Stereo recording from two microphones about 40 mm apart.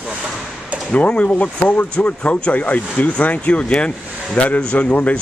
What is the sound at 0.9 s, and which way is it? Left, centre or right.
Speech, left.